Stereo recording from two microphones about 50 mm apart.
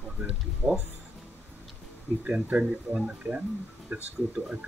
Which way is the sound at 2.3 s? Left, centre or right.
Right.